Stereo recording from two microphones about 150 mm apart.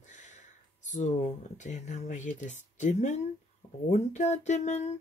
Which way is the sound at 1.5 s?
55° left (ahead or behind).